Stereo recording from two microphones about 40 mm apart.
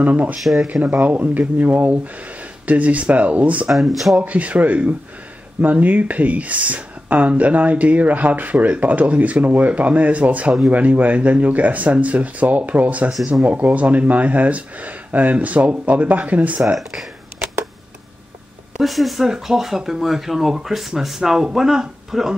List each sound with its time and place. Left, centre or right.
0.0 s speech: right
3.7 s speech: centre
4.2 s speech: right
18.8 s speech: centre
19.2 s speech: centre